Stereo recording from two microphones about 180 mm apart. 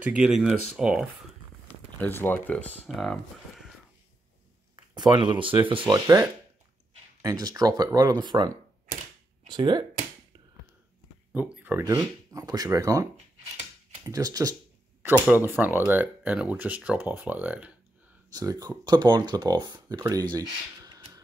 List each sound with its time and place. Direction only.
0.0 s speech: 5° right (ahead or behind)
1.7 s speech: 10° left (ahead or behind)
4.9 s speech: 25° right (ahead or behind)
11.3 s speech: 10° right (ahead or behind)
11.8 s speech: 20° right (ahead or behind)
18.3 s speech: 20° right (ahead or behind)
20.3 s a sound: 20° right (ahead or behind)